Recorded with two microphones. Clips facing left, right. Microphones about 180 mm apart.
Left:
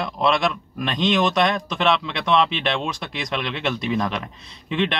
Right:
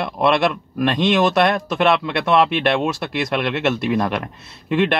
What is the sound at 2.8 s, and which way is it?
Speech, 5° right (ahead or behind).